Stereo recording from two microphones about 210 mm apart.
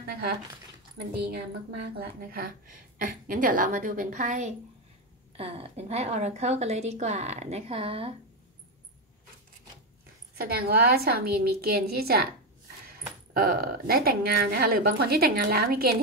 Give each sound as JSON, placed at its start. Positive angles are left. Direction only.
{"t": 1.3, "sound": "a woman's voice", "side_deg": -50}
{"t": 10.3, "sound": "a woman's voice", "side_deg": -45}
{"t": 13.3, "sound": "a woman's voice", "side_deg": -45}